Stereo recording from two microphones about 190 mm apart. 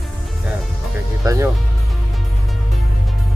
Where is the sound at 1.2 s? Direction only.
15° right (ahead or behind).